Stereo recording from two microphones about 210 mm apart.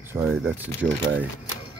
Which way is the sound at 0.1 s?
10° right (ahead or behind).